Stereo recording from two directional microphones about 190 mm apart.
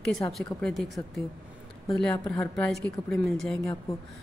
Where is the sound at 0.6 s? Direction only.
Centre (ahead or behind).